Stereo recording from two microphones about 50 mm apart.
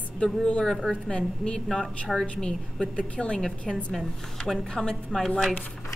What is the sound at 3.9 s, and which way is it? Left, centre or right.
A woman's voice, centre.